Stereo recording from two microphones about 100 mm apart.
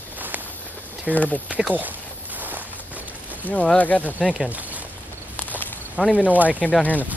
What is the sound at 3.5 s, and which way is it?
Speech, 15° left (ahead or behind).